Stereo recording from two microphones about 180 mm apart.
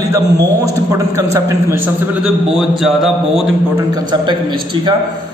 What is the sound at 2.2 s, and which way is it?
A man's voice, centre (ahead or behind).